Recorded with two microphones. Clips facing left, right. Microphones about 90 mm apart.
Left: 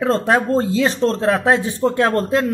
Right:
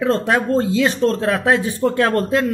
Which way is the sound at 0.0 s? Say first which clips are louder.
Left 1 dB; 30° left (ahead or behind).